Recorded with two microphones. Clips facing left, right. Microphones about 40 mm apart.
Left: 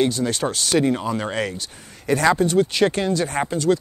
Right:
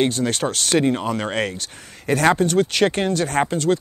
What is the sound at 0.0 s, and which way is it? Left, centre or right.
Speech, right.